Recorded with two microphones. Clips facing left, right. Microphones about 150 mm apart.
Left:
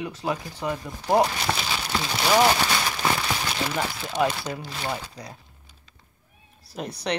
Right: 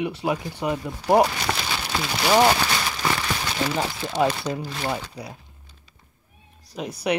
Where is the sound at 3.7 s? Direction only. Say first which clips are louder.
Right 2 dB; 15° right (ahead or behind).